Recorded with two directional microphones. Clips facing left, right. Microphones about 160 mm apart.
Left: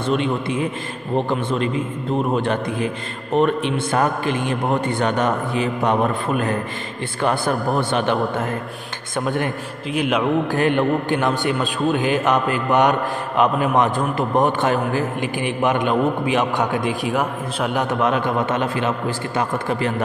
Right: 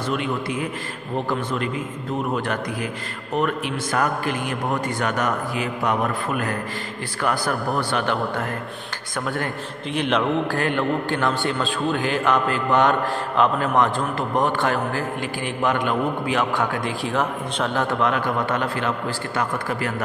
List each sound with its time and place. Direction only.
0.1 s a man's voice: 25° left (ahead or behind)
9.9 s a man's voice: 10° left (ahead or behind)